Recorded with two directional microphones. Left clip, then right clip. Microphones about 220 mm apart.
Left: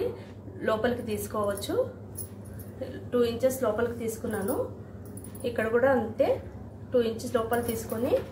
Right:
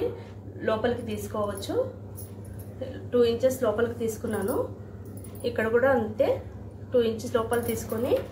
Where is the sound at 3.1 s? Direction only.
5° left (ahead or behind).